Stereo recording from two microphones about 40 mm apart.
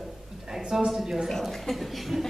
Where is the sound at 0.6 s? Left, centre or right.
Right.